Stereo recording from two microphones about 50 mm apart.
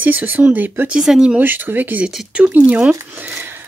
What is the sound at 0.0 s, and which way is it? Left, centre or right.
Speech, right.